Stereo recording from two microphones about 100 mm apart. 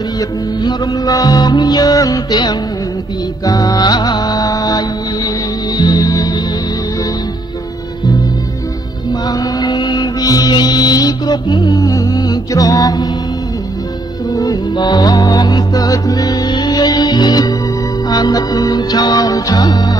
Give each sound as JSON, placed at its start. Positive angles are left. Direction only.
{"t": 0.7, "sound": "music", "side_deg": 40}
{"t": 9.6, "sound": "music", "side_deg": 40}
{"t": 14.3, "sound": "music", "side_deg": 35}
{"t": 14.8, "sound": "music", "side_deg": 45}